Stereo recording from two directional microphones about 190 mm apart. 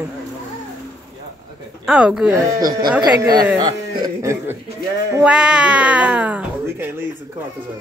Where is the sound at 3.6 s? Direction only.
20° right (ahead or behind).